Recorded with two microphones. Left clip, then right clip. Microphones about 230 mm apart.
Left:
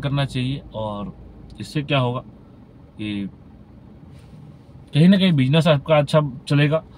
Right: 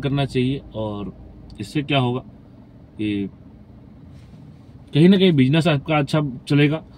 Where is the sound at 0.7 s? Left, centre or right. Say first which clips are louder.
Even; right.